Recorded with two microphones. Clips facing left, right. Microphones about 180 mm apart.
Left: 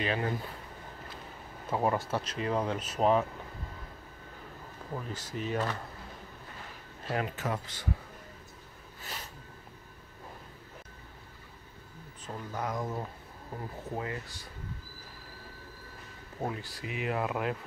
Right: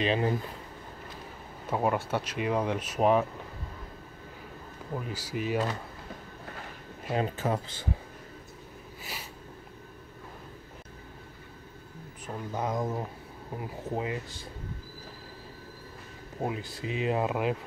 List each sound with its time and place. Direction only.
0.0 s speech: 20° right (ahead or behind)
1.7 s speech: 10° right (ahead or behind)
5.0 s speech: 10° right (ahead or behind)
7.1 s speech: 25° right (ahead or behind)
9.0 s a sound: 10° right (ahead or behind)
12.5 s speech: 20° right (ahead or behind)
16.3 s speech: 15° right (ahead or behind)